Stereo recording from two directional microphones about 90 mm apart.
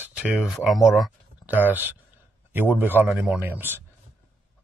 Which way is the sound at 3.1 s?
10° right (ahead or behind).